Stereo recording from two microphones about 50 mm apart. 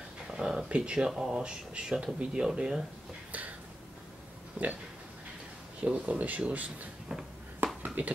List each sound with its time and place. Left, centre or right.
0.3 s a sound: centre
0.7 s speech: right
3.3 s a sound: right
4.6 s speech: right
5.9 s speech: right
7.6 s whispering: right